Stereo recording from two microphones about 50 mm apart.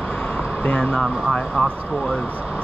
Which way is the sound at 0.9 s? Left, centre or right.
Centre.